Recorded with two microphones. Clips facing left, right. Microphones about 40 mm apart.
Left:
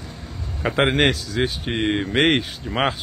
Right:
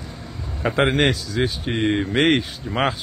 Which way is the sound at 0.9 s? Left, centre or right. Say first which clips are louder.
Even; left.